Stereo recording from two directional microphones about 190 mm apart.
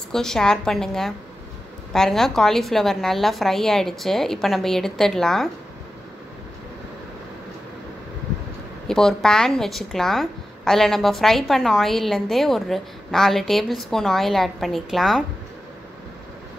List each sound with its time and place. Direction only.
0.1 s a woman's voice: 5° left (ahead or behind)
8.8 s a woman's voice: centre (ahead or behind)